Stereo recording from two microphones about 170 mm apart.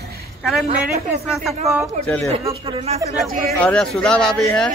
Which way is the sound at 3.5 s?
5° left (ahead or behind).